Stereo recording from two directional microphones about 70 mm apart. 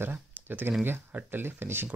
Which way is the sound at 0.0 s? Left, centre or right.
Right.